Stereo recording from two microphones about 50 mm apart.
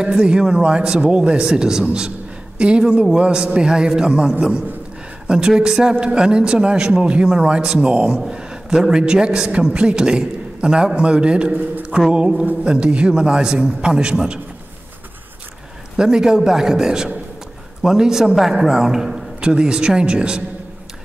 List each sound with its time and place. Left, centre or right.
0.0 s a man's voice: centre
16.0 s a man's voice: centre